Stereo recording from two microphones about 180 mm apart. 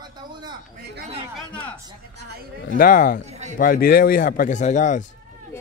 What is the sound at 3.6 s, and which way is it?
A man's voice, 55° left (ahead or behind).